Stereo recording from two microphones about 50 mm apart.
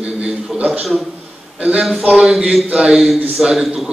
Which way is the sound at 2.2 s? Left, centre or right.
Centre.